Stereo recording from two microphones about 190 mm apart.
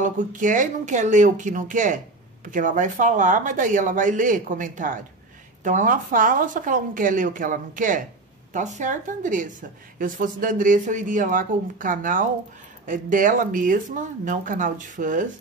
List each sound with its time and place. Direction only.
0.0 s a woman's voice: 45° right (ahead or behind)